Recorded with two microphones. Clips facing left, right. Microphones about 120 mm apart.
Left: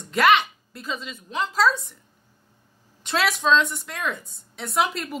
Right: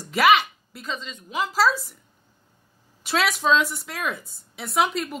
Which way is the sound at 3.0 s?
Centre (ahead or behind).